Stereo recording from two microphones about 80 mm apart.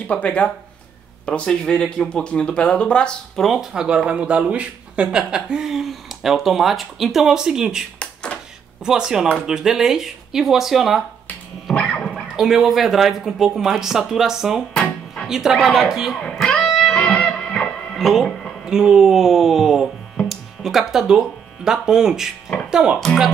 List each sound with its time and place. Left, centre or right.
0.0 s speech: centre
3.3 s speech: centre
8.0 s a sound: centre
8.8 s speech: centre
11.8 s music: centre
12.4 s speech: centre
16.2 s music: centre
18.7 s speech: centre
20.2 s music: centre
21.6 s speech: centre